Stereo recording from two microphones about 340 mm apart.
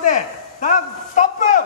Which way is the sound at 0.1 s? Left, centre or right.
Left.